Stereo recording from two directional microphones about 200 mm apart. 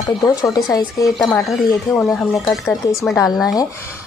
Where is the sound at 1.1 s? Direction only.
Centre (ahead or behind).